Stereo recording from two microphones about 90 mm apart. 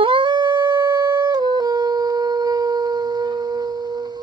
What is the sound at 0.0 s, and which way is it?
Music, 65° right (ahead or behind).